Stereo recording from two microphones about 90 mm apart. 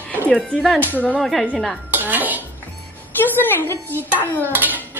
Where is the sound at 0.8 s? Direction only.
20° left (ahead or behind).